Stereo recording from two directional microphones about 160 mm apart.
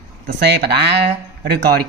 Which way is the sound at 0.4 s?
90° right.